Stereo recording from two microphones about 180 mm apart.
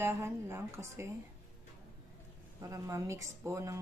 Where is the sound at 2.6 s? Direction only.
15° right (ahead or behind).